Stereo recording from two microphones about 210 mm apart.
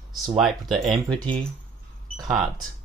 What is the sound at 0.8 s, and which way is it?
Speech, 5° left (ahead or behind).